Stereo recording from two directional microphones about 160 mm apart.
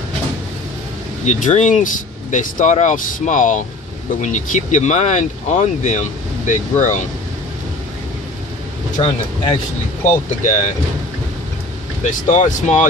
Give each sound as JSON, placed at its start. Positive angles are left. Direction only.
{"t": 1.2, "sound": "speech", "side_deg": 45}
{"t": 10.0, "sound": "speech", "side_deg": 50}
{"t": 12.0, "sound": "speech", "side_deg": 50}